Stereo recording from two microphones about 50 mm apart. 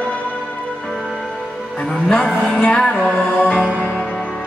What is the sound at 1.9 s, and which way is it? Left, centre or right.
Music, left.